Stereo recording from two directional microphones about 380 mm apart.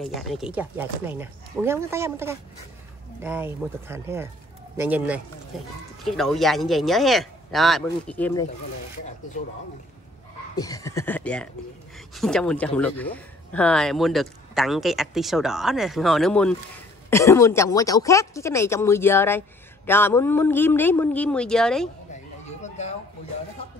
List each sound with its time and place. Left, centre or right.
0.0 s speech: centre
10.5 s speech: centre
22.6 s a sound: centre